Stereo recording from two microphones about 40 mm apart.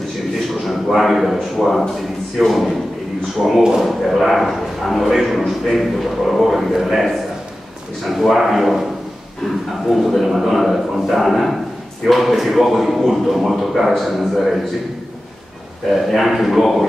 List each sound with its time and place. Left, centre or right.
0.7 s a man's voice: centre
9.8 s a man's voice: centre
15.9 s a man's voice: centre